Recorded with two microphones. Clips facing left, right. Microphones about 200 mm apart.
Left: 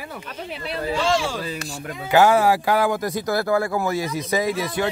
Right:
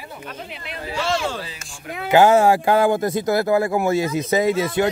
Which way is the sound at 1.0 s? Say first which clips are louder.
Even; 10° left (ahead or behind).